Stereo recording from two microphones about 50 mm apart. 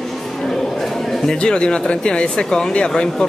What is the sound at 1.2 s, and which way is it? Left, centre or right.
Speech, centre.